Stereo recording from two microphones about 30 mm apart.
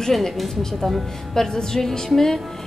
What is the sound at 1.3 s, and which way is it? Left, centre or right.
A woman's voice, centre.